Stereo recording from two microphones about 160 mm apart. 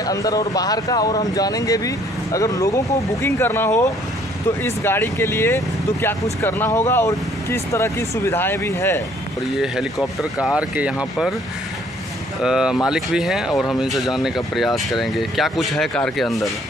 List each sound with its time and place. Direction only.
0.0 s speech: 20° left (ahead or behind)
9.6 s speech: centre (ahead or behind)
12.4 s speech: 5° right (ahead or behind)